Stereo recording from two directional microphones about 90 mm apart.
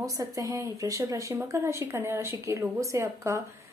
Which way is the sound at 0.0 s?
40° right (ahead or behind).